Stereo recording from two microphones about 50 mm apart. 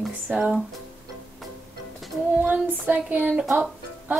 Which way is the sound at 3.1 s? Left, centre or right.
Right.